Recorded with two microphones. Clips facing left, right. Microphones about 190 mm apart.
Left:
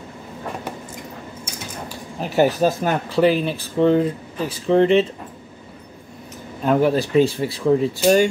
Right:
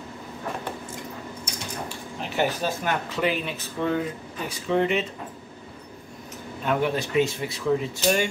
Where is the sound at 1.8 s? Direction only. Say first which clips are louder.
Left 4 dB; 40° left (ahead or behind).